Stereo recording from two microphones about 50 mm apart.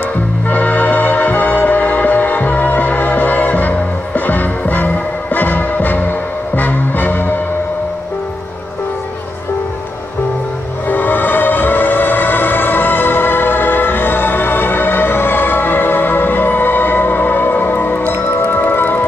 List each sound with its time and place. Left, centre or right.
0.5 s music: left
10.9 s music: left